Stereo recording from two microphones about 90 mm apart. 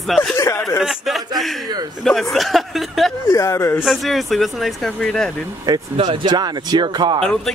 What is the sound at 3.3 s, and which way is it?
Speech, 30° left (ahead or behind).